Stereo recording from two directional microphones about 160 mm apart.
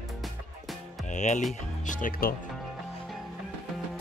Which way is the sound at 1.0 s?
50° left (ahead or behind).